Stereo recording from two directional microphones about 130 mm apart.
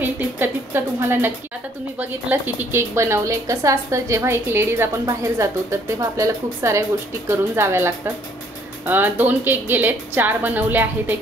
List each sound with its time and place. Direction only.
0.0 s a woman's voice: 15° right (ahead or behind)